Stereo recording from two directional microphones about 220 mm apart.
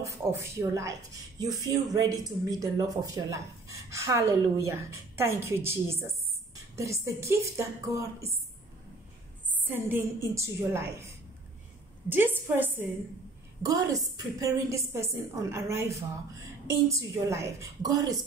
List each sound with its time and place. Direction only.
0.0 s a woman's voice: 15° right (ahead or behind)
9.7 s a woman's voice: 10° right (ahead or behind)
12.1 s a woman's voice: 10° right (ahead or behind)